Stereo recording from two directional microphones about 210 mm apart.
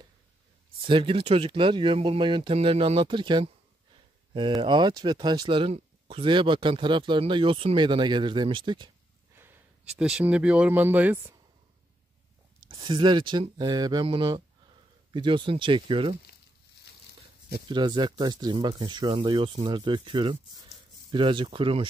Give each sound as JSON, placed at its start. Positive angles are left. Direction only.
{"t": 0.8, "sound": "speech", "side_deg": -25}
{"t": 9.4, "sound": "speech", "side_deg": -5}
{"t": 12.6, "sound": "speech", "side_deg": -20}
{"t": 17.6, "sound": "speech", "side_deg": -20}